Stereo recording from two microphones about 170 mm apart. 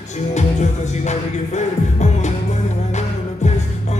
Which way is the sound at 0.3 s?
45° left (ahead or behind).